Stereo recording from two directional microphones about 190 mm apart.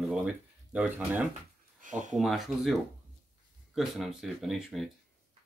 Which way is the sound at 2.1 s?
Centre (ahead or behind).